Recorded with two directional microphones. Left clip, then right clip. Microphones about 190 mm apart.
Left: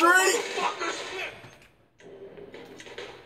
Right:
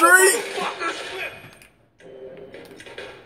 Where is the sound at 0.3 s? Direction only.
Centre (ahead or behind).